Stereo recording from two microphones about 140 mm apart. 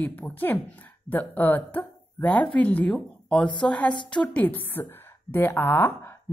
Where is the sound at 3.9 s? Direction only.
35° left (ahead or behind).